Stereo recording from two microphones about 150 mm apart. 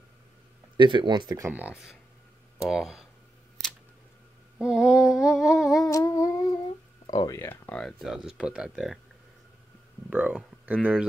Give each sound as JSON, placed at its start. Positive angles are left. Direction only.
{"t": 0.7, "sound": "speech", "side_deg": -30}
{"t": 2.6, "sound": "speech", "side_deg": -5}
{"t": 4.6, "sound": "speech", "side_deg": -5}
{"t": 5.9, "sound": "humming", "side_deg": 20}
{"t": 7.1, "sound": "speech", "side_deg": 25}
{"t": 10.0, "sound": "speech", "side_deg": -10}